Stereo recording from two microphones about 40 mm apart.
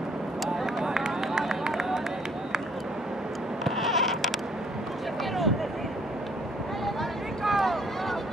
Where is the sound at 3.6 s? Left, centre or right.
Centre.